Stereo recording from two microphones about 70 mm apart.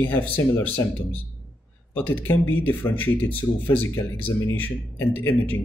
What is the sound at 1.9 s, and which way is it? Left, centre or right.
Speech, left.